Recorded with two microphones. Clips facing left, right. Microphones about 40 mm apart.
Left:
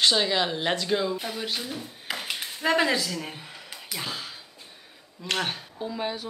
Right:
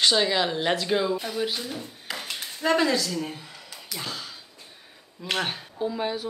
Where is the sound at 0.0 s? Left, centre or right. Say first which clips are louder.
Right 1 dB; centre.